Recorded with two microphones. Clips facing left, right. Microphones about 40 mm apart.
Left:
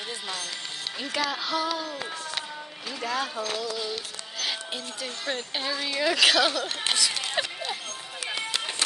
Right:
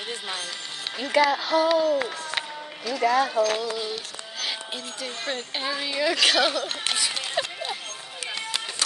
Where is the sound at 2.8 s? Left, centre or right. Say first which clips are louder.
Right 8 dB; right.